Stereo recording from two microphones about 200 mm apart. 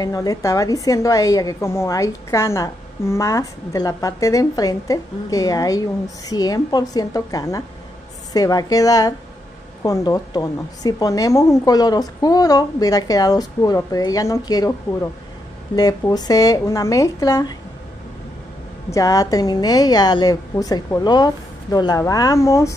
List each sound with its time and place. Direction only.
0.0 s a woman's voice: 20° left (ahead or behind)
18.9 s a woman's voice: 15° left (ahead or behind)